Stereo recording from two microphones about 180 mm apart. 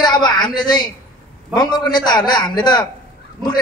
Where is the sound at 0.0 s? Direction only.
25° left (ahead or behind).